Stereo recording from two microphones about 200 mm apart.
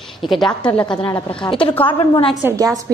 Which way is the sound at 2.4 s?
15° right (ahead or behind).